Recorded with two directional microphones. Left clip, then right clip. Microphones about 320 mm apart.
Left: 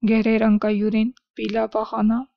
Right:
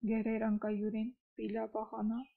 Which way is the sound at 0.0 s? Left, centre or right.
Left.